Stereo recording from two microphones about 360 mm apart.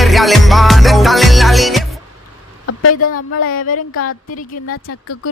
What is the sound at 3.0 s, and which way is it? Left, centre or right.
A woman's voice, left.